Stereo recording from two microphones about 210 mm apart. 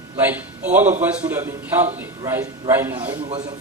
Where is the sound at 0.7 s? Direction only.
10° right (ahead or behind).